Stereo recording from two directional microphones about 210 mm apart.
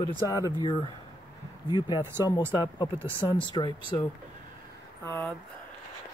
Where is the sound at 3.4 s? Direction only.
20° left (ahead or behind).